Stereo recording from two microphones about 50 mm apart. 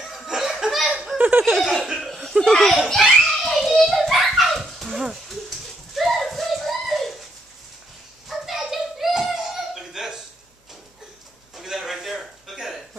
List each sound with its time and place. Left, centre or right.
0.0 s laughter: centre
1.1 s laughter: right
1.6 s laughter: centre
1.9 s laughter: centre
2.4 s a child's voice: centre
2.9 s children playing: centre
4.1 s a sound: centre
8.3 s a sound: centre
11.5 s a sound: centre